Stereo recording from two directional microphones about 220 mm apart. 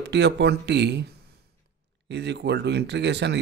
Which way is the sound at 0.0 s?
50° right (ahead or behind).